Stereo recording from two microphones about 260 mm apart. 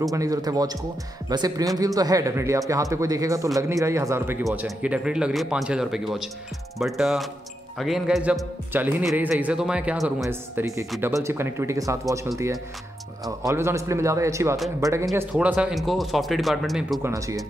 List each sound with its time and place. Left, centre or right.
0.1 s a man's voice: centre
13.4 s a man's voice: centre